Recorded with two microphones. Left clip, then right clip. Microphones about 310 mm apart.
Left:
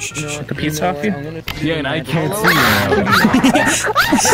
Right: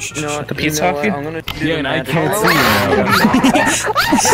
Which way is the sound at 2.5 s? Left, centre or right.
Centre.